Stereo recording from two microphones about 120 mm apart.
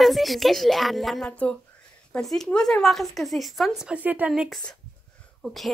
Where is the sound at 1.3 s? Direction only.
10° left (ahead or behind); by 4.3 s 15° right (ahead or behind).